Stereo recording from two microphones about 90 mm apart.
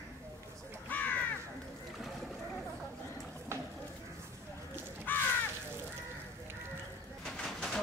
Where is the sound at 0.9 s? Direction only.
20° left (ahead or behind).